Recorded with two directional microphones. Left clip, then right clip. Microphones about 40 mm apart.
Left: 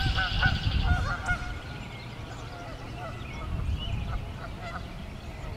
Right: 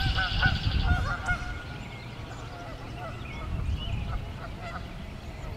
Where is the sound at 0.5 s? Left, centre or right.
Left.